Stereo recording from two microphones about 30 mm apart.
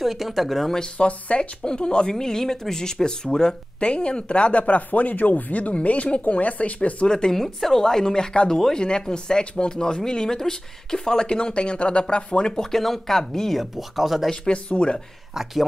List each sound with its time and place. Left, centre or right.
0.0 s speech: centre
0.9 s speech: left
1.6 s speech: left
2.1 s speech: centre
3.8 s speech: left
7.1 s speech: left
7.3 s speech: centre
7.7 s speech: centre; by 12.5 s left
12.7 s speech: centre
13.7 s speech: centre
14.5 s speech: left
15.3 s speech: centre